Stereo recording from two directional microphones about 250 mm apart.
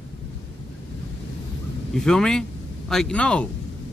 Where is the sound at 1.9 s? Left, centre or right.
Centre.